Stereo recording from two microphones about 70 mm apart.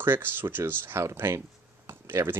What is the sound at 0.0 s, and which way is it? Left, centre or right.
Speech, right.